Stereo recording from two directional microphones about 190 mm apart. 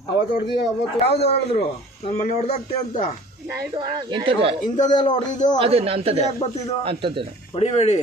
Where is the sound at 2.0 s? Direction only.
40° left (ahead or behind).